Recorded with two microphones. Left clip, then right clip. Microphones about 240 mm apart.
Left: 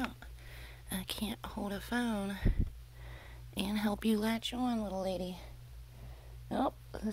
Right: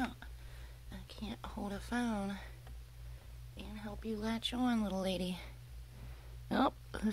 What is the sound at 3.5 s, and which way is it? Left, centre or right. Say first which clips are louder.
Speech: left 12 dB; left.